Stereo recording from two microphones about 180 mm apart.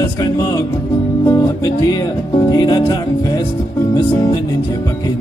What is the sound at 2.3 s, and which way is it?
Music, 20° left (ahead or behind).